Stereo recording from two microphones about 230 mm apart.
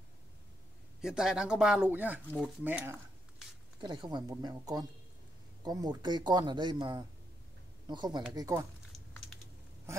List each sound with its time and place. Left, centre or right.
1.0 s speech: centre
2.2 s a sound: centre
4.1 s speech: centre
8.9 s typing: centre